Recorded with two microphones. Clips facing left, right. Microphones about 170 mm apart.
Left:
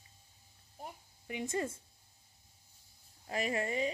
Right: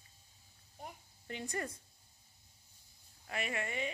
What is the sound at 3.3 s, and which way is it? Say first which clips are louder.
Speech: left 5 dB; 35° left (ahead or behind).